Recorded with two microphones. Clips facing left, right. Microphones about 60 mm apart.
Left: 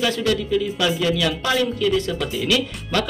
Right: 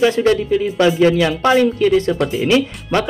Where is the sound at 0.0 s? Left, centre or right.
Right.